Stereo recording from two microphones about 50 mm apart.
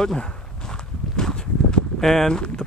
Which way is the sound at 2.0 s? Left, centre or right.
Centre.